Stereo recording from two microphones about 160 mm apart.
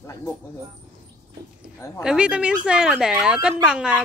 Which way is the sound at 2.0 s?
5° right (ahead or behind).